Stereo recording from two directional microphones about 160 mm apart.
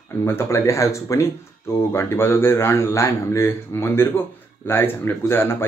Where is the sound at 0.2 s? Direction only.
15° left (ahead or behind).